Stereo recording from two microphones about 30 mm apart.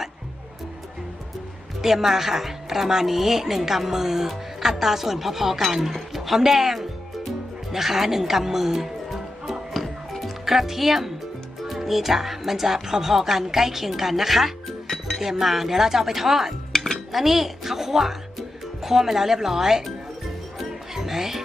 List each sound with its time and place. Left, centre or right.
1.8 s speech: centre
14.9 s music: centre
15.2 s speech: centre
16.7 s dishes: centre
17.1 s speech: centre
20.9 s music: centre